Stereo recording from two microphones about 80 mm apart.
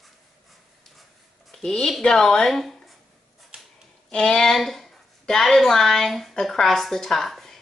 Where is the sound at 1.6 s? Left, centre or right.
Centre.